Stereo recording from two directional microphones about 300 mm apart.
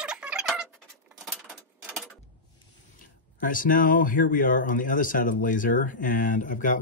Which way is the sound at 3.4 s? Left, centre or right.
Left.